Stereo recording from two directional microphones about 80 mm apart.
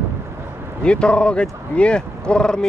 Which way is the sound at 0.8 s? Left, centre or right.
Centre.